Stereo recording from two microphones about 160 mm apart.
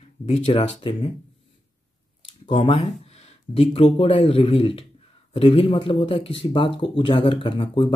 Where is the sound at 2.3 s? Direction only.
35° left (ahead or behind).